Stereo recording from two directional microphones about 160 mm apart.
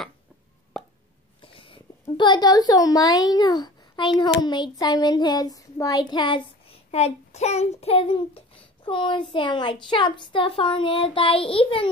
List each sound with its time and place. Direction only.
1.4 s a woman's voice: 35° left (ahead or behind)
4.5 s child singing: 25° left (ahead or behind)
6.9 s a child's voice: 40° left (ahead or behind)